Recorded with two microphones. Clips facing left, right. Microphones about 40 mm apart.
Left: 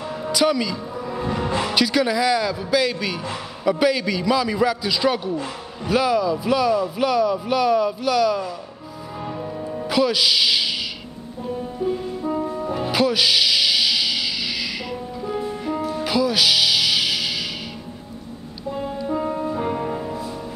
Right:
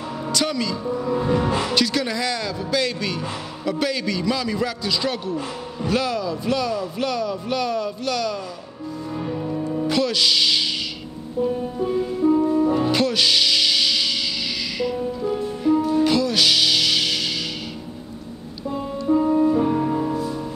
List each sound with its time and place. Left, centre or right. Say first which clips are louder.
0.3 s speech: left 4 dB; centre
9.2 s music: right 2 dB; centre
12.4 s music: right 6 dB; centre
19.3 s music: right 7 dB; centre
19.6 s music: right 4 dB; centre